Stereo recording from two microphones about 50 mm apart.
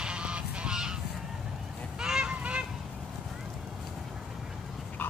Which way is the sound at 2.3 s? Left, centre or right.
Right.